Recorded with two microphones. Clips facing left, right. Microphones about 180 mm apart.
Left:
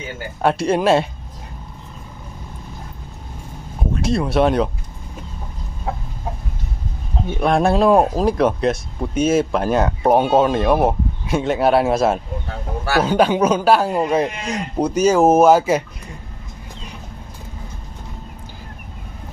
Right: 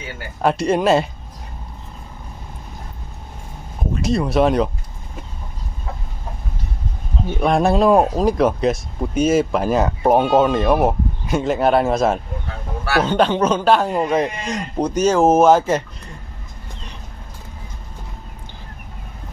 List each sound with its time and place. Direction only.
0.4 s speech: centre (ahead or behind)
3.9 s speech: centre (ahead or behind)
5.9 s chicken: 85° left
7.2 s speech: centre (ahead or behind)